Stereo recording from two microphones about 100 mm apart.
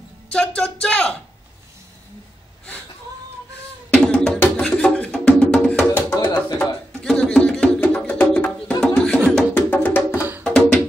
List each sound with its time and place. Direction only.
0.6 s speech: 10° left (ahead or behind)
3.9 s music: 5° left (ahead or behind)
6.0 s music: 40° left (ahead or behind)
6.3 s music: 10° left (ahead or behind)
10.4 s music: 5° left (ahead or behind)